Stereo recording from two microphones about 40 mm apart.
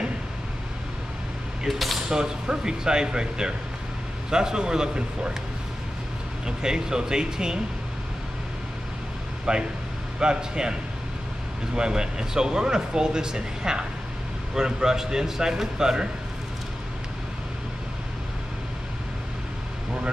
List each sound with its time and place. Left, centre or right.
2.0 s speech: centre
6.4 s speech: centre
9.5 s a man's voice: right